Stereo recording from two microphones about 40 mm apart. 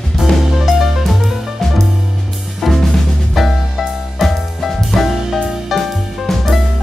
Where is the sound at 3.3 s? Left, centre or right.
Centre.